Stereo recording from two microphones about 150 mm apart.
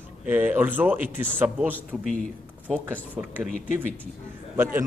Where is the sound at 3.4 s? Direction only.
55° left (ahead or behind).